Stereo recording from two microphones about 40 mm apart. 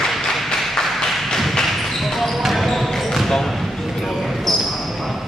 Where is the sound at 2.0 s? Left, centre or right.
Centre.